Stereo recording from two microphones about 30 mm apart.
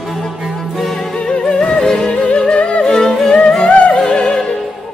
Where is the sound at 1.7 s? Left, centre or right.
Left.